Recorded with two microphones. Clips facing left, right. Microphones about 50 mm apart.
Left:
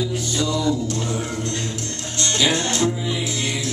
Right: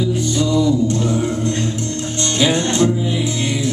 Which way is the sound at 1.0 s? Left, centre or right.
Centre.